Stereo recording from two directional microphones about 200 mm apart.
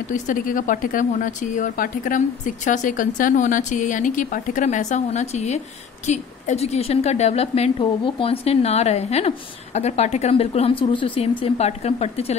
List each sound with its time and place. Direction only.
0.1 s speech: 40° left (ahead or behind)